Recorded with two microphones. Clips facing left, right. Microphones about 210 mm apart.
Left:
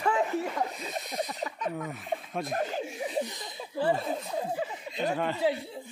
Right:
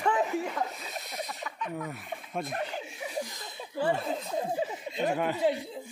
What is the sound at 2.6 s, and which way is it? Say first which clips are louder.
Chuckle: left 4 dB; 40° left (ahead or behind).